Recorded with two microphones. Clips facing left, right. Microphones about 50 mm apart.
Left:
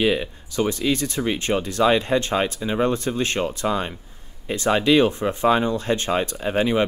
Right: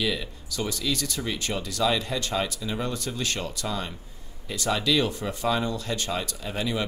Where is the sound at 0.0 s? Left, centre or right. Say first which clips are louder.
Left 8 dB; left.